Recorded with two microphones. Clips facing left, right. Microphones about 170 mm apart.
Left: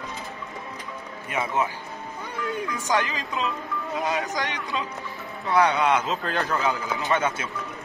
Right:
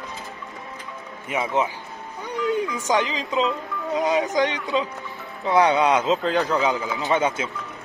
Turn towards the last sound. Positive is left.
turn(degrees=-20)  # may be behind; listen again after turning